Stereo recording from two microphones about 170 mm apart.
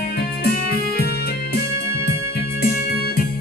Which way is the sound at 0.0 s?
65° left (ahead or behind).